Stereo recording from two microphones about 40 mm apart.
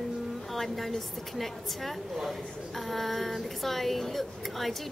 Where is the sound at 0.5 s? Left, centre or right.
Centre.